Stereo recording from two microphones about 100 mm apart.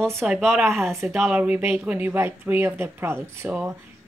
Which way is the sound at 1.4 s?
15° right (ahead or behind).